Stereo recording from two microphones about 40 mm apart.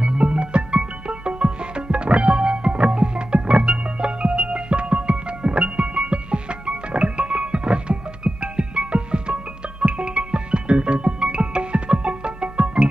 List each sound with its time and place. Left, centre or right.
0.0 s music: right